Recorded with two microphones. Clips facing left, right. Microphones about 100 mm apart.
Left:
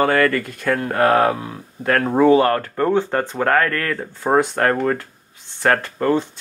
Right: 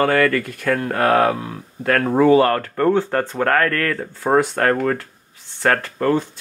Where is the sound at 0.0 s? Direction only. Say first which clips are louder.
Even; 25° left (ahead or behind).